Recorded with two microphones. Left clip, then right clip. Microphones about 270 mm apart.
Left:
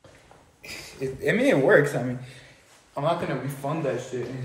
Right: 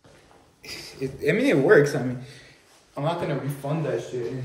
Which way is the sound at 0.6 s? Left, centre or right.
Centre.